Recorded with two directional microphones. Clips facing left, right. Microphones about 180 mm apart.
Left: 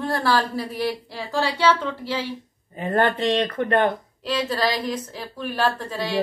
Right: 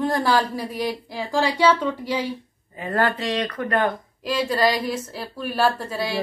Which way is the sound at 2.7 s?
25° left (ahead or behind).